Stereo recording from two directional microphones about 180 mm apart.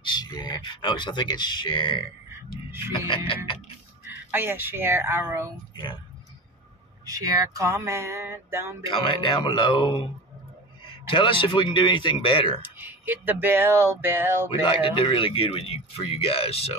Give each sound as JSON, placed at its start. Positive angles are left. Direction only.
{"t": 0.0, "sound": "speech", "side_deg": 25}
{"t": 4.3, "sound": "speech", "side_deg": -10}
{"t": 7.1, "sound": "speech", "side_deg": -20}
{"t": 8.8, "sound": "speech", "side_deg": 30}
{"t": 12.6, "sound": "speech", "side_deg": -10}
{"t": 14.5, "sound": "speech", "side_deg": 30}